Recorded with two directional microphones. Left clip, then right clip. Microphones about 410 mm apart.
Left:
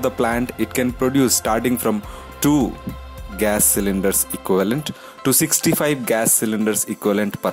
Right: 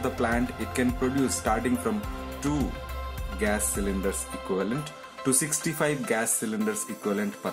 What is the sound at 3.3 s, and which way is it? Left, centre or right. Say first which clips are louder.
Speech: left 9 dB; left.